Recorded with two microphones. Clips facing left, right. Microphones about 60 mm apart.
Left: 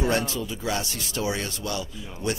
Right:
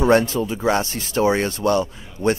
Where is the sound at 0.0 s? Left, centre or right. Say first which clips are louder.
Right 9 dB; right.